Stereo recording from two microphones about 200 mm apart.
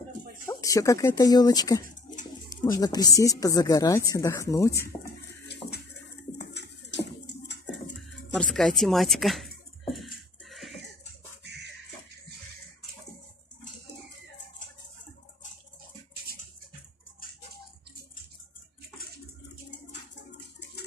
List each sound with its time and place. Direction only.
0.5 s speech: 15° left (ahead or behind)
6.5 s pigeon: 60° left (ahead or behind)
8.4 s speech: centre (ahead or behind)
10.4 s a sound: centre (ahead or behind)